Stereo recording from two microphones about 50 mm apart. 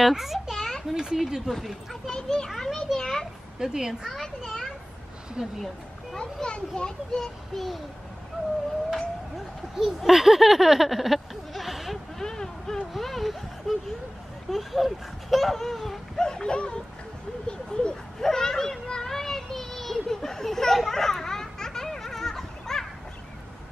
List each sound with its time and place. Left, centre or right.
0.0 s a child's voice: centre
0.6 s children playing: centre
0.9 s a woman's voice: centre
2.2 s a child's voice: centre
3.5 s a woman's voice: centre
4.5 s children playing: centre
5.4 s a woman's voice: centre
6.1 s a child's voice: centre
7.5 s speech: centre
9.8 s speech: centre
12.2 s a sound: centre
14.5 s speech: centre
16.3 s a child's voice: centre
17.5 s children playing: centre